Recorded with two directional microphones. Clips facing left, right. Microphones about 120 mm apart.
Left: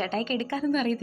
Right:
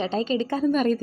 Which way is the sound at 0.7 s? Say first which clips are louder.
Right 3 dB; 45° right (ahead or behind).